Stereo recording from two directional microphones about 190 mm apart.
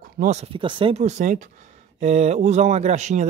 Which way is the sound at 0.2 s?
35° right (ahead or behind).